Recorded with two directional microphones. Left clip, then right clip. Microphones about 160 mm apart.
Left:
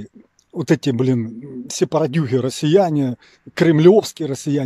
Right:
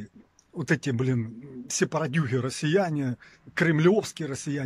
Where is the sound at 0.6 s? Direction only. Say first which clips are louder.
Left 9 dB; 25° left (ahead or behind).